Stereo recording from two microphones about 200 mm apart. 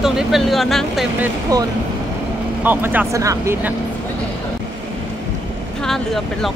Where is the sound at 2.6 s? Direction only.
10° right (ahead or behind).